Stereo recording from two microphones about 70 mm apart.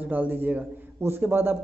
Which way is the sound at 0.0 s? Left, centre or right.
Right.